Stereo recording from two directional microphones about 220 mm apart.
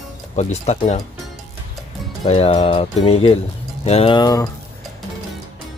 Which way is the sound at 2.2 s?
25° left (ahead or behind).